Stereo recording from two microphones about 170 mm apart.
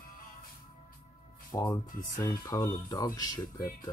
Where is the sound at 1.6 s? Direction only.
20° left (ahead or behind).